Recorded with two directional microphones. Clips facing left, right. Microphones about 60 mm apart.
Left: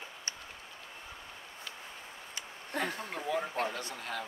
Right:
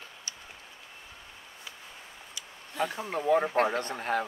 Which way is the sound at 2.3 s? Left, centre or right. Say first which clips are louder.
Right 4 dB; left.